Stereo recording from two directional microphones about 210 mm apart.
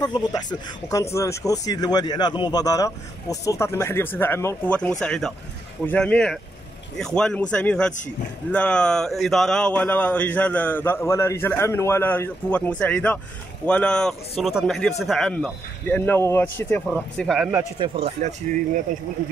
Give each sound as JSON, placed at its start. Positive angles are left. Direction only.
{"t": 0.0, "sound": "speech", "side_deg": 20}
{"t": 17.7, "sound": "speech", "side_deg": -25}